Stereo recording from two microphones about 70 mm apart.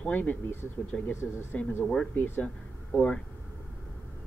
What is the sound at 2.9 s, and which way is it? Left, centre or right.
Speech, centre.